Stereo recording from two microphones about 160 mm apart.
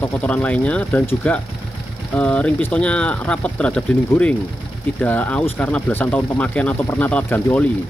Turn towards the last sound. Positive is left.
turn(degrees=10)  # may be behind; listen again after turning